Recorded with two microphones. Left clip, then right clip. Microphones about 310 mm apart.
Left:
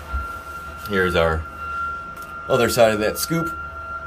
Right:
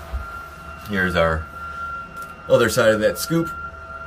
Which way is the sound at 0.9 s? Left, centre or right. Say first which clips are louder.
Left 1 dB; centre.